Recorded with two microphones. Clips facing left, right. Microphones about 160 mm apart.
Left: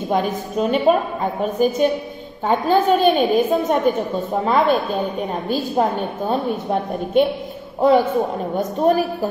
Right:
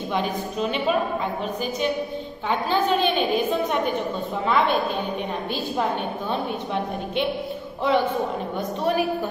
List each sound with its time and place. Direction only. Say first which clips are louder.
0.1 s a woman's voice: left 6 dB; 45° left (ahead or behind)
8.5 s a woman's voice: left 7 dB; 45° left (ahead or behind)